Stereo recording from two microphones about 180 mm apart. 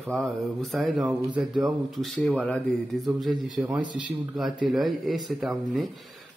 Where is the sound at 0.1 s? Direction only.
Centre (ahead or behind).